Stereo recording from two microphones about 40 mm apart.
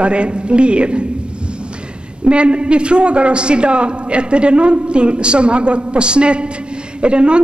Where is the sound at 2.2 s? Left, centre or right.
Right.